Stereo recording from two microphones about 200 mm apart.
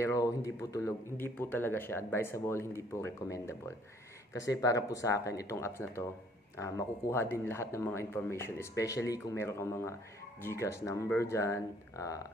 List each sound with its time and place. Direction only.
0.0 s speech: 15° left (ahead or behind)